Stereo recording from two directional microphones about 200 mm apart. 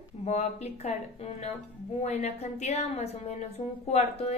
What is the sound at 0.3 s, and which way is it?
Speech, 35° left (ahead or behind).